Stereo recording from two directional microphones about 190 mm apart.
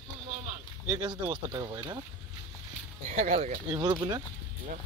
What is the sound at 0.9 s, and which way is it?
Speech, 20° right (ahead or behind).